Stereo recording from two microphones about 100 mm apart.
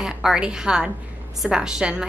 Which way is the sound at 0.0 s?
5° right (ahead or behind).